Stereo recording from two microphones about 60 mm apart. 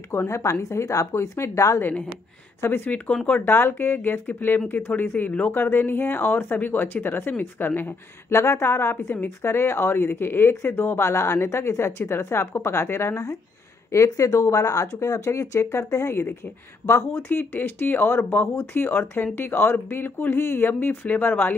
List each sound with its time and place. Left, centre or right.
0.1 s speech: left
2.6 s speech: left
8.3 s speech: left
13.9 s speech: left